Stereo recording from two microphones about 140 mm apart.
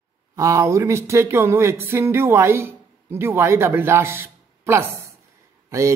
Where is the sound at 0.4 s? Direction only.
20° right (ahead or behind).